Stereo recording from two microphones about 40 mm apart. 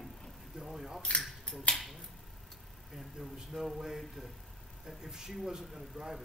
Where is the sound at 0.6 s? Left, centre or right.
Centre.